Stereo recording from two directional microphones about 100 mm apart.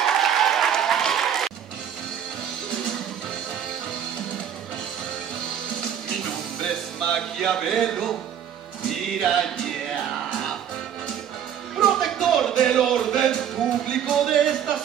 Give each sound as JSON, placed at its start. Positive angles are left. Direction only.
{"t": 0.0, "sound": "applause", "side_deg": 5}
{"t": 2.7, "sound": "music", "side_deg": 0}
{"t": 5.8, "sound": "music", "side_deg": 5}
{"t": 11.8, "sound": "a sound", "side_deg": 0}